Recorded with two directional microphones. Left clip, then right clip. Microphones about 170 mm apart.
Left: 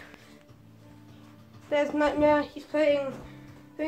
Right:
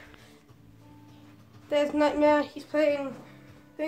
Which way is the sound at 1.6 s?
15° right (ahead or behind).